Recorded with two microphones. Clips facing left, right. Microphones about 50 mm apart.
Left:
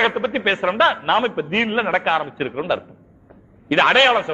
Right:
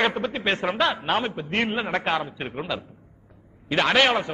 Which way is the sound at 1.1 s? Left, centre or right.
Left.